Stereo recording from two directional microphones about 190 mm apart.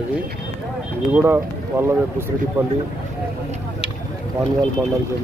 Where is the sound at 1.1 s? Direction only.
10° right (ahead or behind).